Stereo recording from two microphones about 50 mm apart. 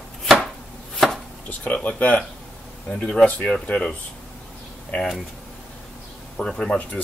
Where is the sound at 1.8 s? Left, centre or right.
Left.